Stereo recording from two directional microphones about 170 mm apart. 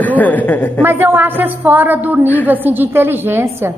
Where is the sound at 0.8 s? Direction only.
15° right (ahead or behind).